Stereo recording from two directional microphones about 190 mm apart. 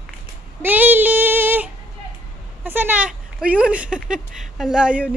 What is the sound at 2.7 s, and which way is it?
Speech, 10° right (ahead or behind).